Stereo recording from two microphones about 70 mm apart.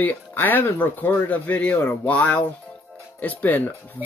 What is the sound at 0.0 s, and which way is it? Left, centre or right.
Speech, left.